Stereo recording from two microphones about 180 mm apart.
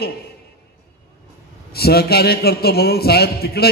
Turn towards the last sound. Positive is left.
turn(degrees=60)  # may be behind; listen again after turning